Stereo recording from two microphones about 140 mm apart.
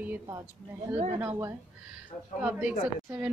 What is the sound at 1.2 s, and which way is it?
A woman's voice, 15° right (ahead or behind).